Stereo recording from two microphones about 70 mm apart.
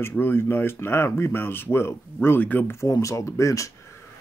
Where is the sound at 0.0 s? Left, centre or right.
Left.